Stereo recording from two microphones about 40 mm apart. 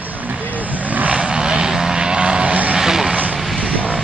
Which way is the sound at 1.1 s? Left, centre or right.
Right.